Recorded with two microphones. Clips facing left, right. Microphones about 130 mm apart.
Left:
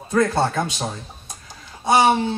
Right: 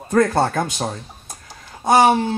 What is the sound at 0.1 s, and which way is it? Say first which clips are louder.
A man's voice: right 2 dB; 45° right (ahead or behind).